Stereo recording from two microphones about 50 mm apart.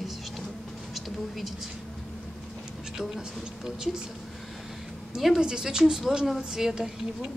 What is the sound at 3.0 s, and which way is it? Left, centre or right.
A woman's voice, centre.